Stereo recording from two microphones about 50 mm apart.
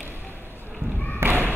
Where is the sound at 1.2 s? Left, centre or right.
Right.